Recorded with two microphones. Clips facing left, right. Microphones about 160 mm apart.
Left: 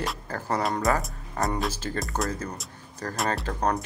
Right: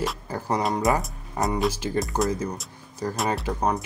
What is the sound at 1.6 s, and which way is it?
Speech, 10° right (ahead or behind).